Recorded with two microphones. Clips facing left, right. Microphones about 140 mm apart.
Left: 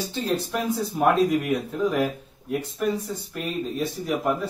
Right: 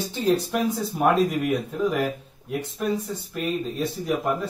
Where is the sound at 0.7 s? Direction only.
Centre (ahead or behind).